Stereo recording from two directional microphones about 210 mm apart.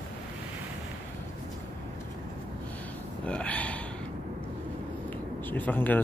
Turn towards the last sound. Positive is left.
turn(degrees=10)  # may be behind; listen again after turning